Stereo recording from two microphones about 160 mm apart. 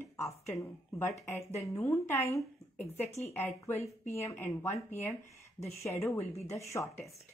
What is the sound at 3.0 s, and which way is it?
Speech, 40° left (ahead or behind).